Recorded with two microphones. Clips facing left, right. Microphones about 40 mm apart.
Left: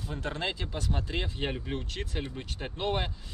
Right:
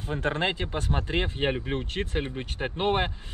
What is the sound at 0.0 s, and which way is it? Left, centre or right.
Speech, right.